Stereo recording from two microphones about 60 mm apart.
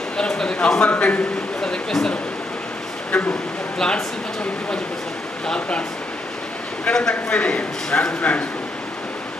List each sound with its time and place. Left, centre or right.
0.2 s a man's voice: centre
1.6 s a man's voice: centre
3.1 s speech: left
3.7 s speech: centre
5.5 s a man's voice: centre
6.9 s a man's voice: centre